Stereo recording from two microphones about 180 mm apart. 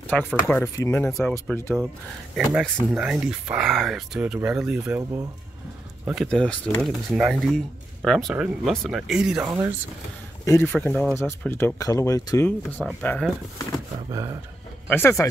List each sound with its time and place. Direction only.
0.0 s speech: 10° left (ahead or behind)
2.3 s speech: centre (ahead or behind)
6.2 s speech: 5° left (ahead or behind)
9.4 s speech: 15° right (ahead or behind)
10.4 s speech: 15° left (ahead or behind)
14.9 s speech: 10° left (ahead or behind)